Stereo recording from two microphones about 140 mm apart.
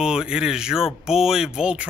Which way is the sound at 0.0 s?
5° right (ahead or behind).